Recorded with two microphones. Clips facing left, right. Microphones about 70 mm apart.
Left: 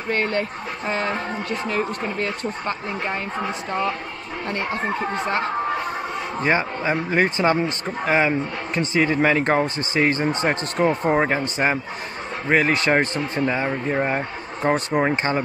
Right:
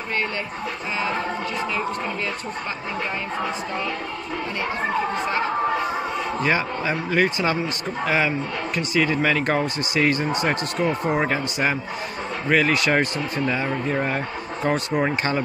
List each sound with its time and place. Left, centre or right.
0.1 s speech: left
6.4 s speech: left